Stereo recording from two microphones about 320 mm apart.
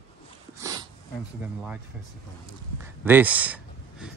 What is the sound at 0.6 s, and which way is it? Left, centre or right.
Sniff, centre.